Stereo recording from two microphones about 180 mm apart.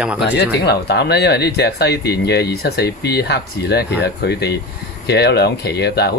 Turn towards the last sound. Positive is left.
turn(degrees=65)  # may be behind; listen again after turning